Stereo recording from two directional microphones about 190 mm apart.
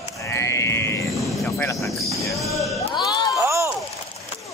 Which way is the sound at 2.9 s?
20° left (ahead or behind).